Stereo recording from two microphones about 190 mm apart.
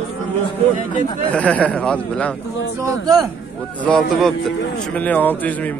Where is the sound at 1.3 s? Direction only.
5° left (ahead or behind).